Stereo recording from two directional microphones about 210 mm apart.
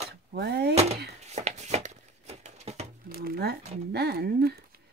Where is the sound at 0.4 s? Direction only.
50° right (ahead or behind).